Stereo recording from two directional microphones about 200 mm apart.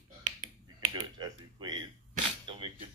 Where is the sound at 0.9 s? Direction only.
20° right (ahead or behind).